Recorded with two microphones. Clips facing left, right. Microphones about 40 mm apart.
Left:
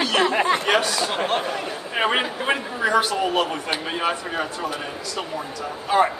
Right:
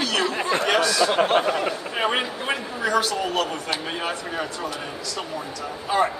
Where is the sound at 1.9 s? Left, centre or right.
Centre.